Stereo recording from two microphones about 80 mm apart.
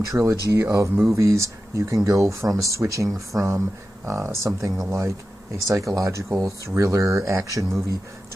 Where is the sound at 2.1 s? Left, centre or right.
Right.